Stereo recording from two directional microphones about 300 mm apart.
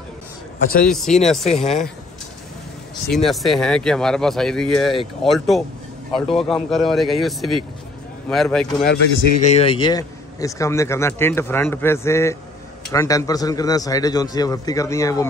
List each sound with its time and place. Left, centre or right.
1.2 s speech: centre
1.5 s speech: left
3.1 s speech: centre
8.8 s a man's voice: left; by 15.2 s centre